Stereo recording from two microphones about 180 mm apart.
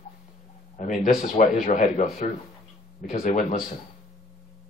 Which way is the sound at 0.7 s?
40° left (ahead or behind).